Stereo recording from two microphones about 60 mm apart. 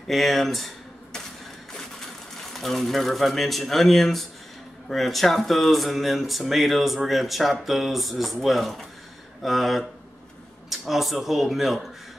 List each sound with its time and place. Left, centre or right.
0.1 s speech: centre
2.5 s speech: centre